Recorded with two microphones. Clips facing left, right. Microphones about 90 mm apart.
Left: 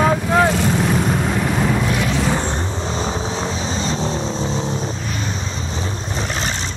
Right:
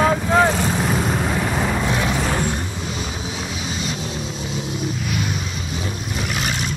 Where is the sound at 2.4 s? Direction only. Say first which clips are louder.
Left 1 dB; 25° left (ahead or behind).